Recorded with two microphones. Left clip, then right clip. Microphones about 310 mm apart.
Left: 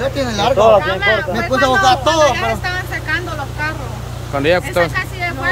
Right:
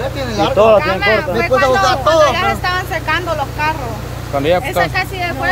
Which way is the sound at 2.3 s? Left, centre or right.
Centre.